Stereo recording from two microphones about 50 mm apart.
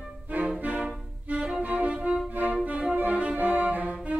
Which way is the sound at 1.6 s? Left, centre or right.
Right.